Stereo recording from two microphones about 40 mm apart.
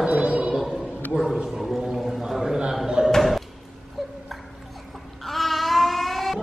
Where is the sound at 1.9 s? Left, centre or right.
Centre.